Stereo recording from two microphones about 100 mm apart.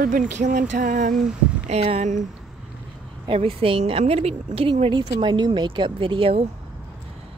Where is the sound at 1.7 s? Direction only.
90° right.